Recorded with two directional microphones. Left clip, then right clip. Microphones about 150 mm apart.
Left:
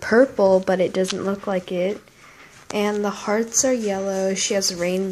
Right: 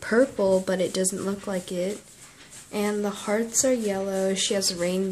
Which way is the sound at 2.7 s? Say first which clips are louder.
Left 5 dB; 25° left (ahead or behind).